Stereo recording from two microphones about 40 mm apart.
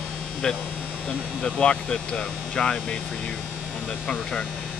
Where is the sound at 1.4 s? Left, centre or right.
Left.